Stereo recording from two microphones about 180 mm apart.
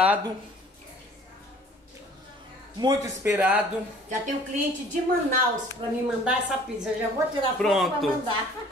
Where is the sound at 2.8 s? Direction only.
20° right (ahead or behind).